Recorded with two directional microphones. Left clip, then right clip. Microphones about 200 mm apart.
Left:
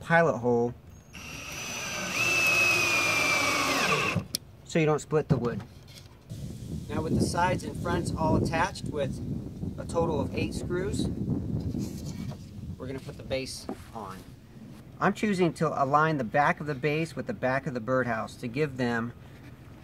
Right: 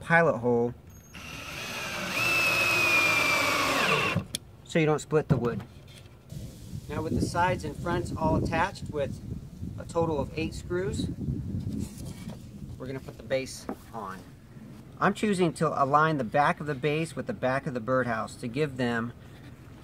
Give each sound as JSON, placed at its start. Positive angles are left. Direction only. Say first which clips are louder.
{"t": 0.0, "sound": "speech", "louder": "right 1 dB", "side_deg": 10}
{"t": 1.1, "sound": "vacuum cleaner", "louder": "even", "side_deg": -5}
{"t": 5.1, "sound": "speech", "louder": "right 1 dB", "side_deg": -10}
{"t": 6.9, "sound": "speech", "louder": "left 1 dB", "side_deg": 0}
{"t": 12.8, "sound": "speech", "louder": "even", "side_deg": -5}